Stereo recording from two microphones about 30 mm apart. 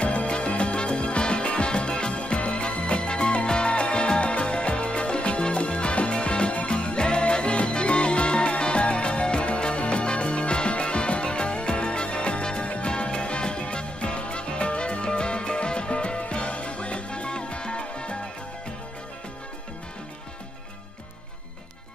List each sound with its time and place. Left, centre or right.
0.0 s music: left